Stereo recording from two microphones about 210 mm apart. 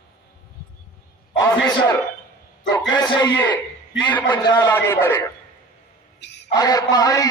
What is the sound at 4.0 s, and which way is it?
A man's voice, 10° left (ahead or behind).